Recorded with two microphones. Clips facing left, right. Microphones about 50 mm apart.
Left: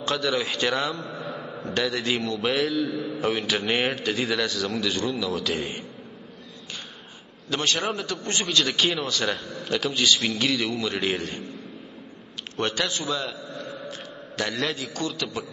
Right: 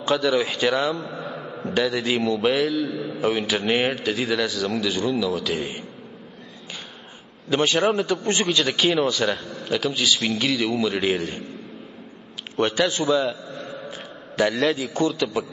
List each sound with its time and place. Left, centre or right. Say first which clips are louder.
0.0 s a man's voice: right 5 dB; centre
7.4 s a man's voice: right 6 dB; centre
8.2 s a man's voice: right 5 dB; right
8.5 s a man's voice: right 1 dB; centre
12.5 s a man's voice: right 6 dB; centre
13.8 s a sound: right 1 dB; centre
14.5 s a man's voice: right 6 dB; centre
15.0 s a man's voice: right 8 dB; centre